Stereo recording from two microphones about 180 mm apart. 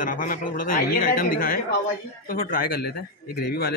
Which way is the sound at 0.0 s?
50° left (ahead or behind).